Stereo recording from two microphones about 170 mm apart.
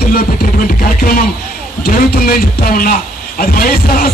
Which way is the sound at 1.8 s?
60° left (ahead or behind).